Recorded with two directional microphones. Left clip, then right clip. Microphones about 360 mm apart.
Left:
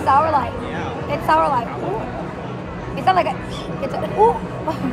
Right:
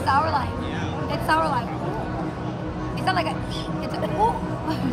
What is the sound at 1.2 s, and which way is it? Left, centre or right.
Speech, centre.